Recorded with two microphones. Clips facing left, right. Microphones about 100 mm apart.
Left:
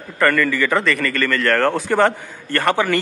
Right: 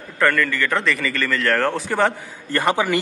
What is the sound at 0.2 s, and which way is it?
A man's voice, centre (ahead or behind).